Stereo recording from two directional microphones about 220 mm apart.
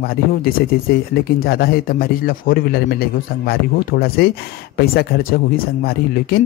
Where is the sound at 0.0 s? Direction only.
45° left (ahead or behind).